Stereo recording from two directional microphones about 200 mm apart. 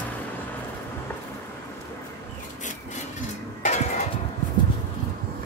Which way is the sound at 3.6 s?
35° left (ahead or behind).